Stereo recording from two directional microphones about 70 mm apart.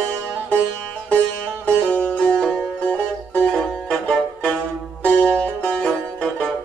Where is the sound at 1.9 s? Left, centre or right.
Left.